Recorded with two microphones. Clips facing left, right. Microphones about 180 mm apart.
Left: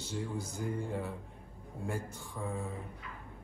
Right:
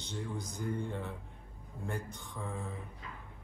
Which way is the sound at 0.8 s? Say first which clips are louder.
Left 2 dB; centre (ahead or behind).